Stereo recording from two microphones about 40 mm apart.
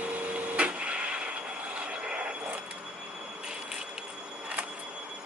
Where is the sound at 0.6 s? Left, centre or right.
Right.